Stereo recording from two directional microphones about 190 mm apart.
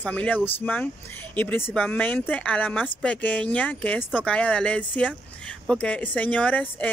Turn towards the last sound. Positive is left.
turn(degrees=10)  # may be behind; listen again after turning